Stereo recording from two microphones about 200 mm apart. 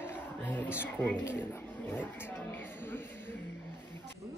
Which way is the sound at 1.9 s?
10° left (ahead or behind).